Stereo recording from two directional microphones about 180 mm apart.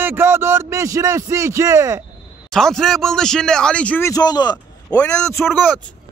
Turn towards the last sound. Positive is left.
turn(degrees=10)  # may be behind; listen again after turning